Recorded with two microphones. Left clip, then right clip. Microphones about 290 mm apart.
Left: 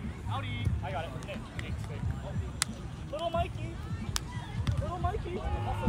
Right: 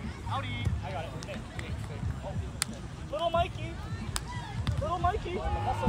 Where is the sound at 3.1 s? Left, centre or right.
Centre.